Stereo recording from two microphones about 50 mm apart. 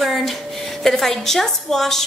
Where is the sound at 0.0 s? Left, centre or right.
Centre.